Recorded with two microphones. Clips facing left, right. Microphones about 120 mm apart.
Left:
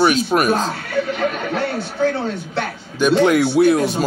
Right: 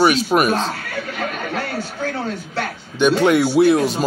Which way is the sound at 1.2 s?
25° left (ahead or behind).